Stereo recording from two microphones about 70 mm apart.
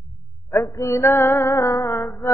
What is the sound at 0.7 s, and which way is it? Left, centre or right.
Music, left.